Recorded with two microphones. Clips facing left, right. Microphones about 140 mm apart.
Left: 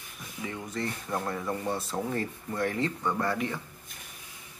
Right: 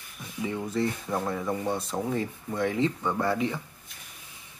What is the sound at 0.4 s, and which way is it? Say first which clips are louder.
Speech: right 6 dB; 15° right (ahead or behind).